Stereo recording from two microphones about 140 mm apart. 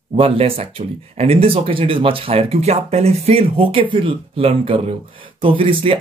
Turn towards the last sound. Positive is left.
turn(degrees=-40)  # may be behind; listen again after turning